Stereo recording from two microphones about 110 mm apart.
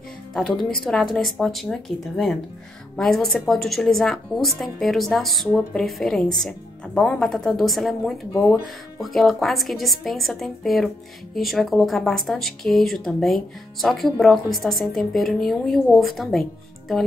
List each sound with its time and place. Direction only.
0.3 s speech: centre (ahead or behind)
8.3 s speech: 35° left (ahead or behind)
9.0 s speech: centre (ahead or behind)